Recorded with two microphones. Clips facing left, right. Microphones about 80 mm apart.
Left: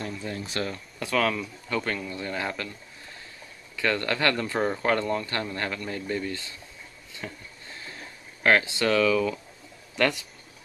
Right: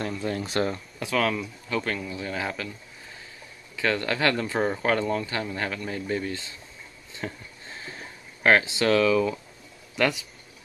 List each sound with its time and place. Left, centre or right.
0.0 s a sound: right
0.9 s speech: centre
3.7 s speech: centre
7.2 s a sound: right
8.4 s speech: right
9.9 s speech: centre